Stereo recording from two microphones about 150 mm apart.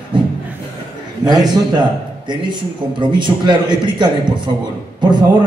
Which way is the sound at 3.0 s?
30° right (ahead or behind).